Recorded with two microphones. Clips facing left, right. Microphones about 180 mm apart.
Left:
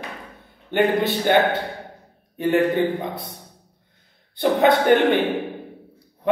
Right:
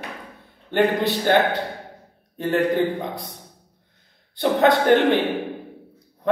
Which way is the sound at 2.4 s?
5° left (ahead or behind).